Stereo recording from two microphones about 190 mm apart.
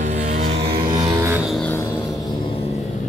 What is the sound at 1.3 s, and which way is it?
Music, centre (ahead or behind).